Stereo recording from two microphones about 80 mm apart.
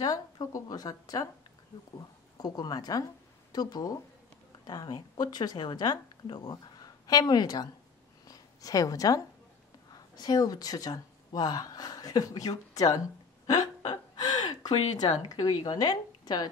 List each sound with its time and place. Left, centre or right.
0.0 s a woman's voice: left
2.3 s speech: left
6.4 s a woman's voice: left
14.1 s a woman's voice: left